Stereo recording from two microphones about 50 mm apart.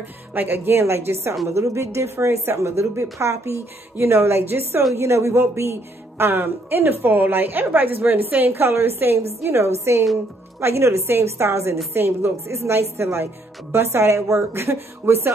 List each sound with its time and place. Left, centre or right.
0.3 s a woman's voice: right
4.9 s a man's voice: right
11.9 s a man's voice: right
12.4 s a woman's voice: right
14.5 s a woman's voice: right